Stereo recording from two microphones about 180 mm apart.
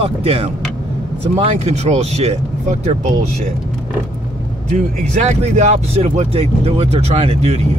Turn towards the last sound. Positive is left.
turn(degrees=-35)  # may be behind; listen again after turning